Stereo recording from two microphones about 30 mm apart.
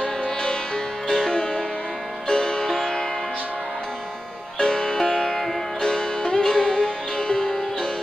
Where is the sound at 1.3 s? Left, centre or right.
Left.